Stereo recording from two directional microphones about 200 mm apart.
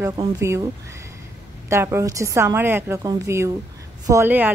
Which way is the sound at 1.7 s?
15° right (ahead or behind).